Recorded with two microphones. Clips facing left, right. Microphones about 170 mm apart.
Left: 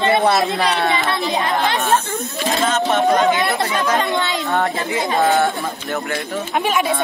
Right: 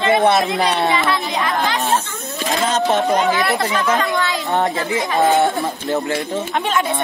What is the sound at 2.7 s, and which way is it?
Speech, 35° right (ahead or behind).